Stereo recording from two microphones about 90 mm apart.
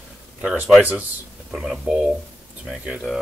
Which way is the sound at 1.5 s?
10° right (ahead or behind).